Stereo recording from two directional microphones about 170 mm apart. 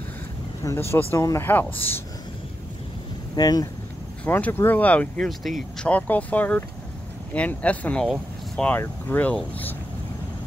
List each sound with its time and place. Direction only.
0.7 s speech: 15° left (ahead or behind)
3.3 s speech: 20° left (ahead or behind)
4.2 s speech: 10° left (ahead or behind)